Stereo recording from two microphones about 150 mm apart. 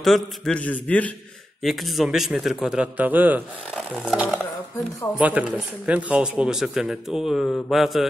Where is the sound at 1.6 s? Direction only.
Centre (ahead or behind).